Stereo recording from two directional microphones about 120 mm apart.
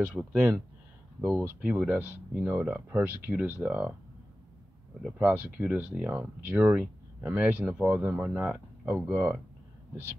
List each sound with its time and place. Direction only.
0.0 s speech: 10° right (ahead or behind)
1.2 s speech: 20° right (ahead or behind)
5.2 s speech: 15° right (ahead or behind)